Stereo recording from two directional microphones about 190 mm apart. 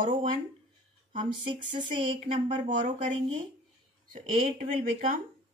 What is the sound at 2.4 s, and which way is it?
Speech, 40° right (ahead or behind).